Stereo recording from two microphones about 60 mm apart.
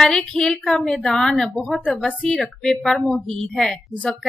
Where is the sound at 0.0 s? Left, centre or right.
Centre.